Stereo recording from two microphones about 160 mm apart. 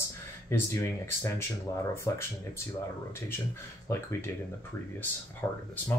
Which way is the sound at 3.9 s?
15° left (ahead or behind).